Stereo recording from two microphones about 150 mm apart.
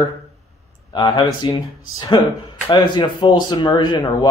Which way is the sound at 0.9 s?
30° left (ahead or behind).